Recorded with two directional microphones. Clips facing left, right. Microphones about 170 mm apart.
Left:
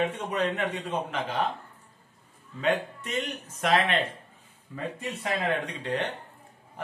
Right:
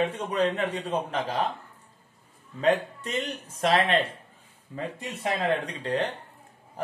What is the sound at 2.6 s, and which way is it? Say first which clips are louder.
A man's voice: right 3 dB; 35° right (ahead or behind).